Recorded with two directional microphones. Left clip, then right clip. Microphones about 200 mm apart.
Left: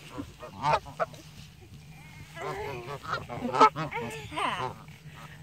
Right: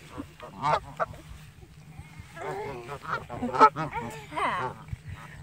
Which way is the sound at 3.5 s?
35° left (ahead or behind).